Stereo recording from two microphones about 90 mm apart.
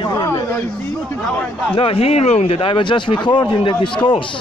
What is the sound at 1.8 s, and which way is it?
Speech, 90° left.